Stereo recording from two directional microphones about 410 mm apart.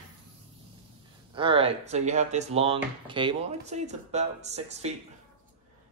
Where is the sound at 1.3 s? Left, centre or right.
Centre.